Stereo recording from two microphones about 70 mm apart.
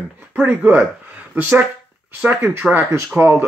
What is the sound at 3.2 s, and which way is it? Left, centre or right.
Speech, right.